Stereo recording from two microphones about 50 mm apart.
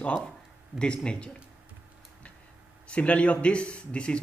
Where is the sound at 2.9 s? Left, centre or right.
Left.